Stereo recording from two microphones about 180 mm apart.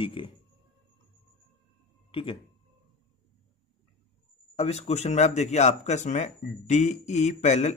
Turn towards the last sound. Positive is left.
turn(degrees=40)  # may be behind; listen again after turning